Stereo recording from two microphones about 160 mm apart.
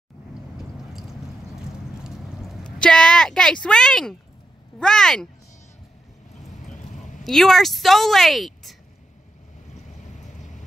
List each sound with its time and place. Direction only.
0.6 s a sound: centre (ahead or behind)
4.7 s speech: 5° left (ahead or behind)
6.5 s vehicle: 50° left (ahead or behind)
7.2 s speech: centre (ahead or behind)
10.1 s vehicle: 50° left (ahead or behind)